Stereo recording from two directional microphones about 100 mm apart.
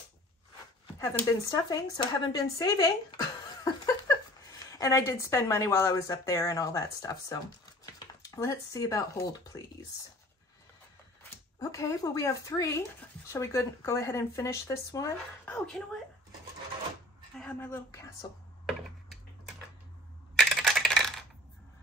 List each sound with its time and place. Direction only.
0.9 s speech: 30° left (ahead or behind)
3.6 s a sound: 30° left (ahead or behind)
4.6 s speech: 35° left (ahead or behind)
8.4 s speech: 30° left (ahead or behind)
11.2 s speech: 35° left (ahead or behind)
15.4 s speech: 10° left (ahead or behind)
17.4 s a sound: 10° left (ahead or behind)
18.2 s speech: 45° left (ahead or behind)
18.7 s a sound: centre (ahead or behind)
20.3 s computer keyboard: centre (ahead or behind)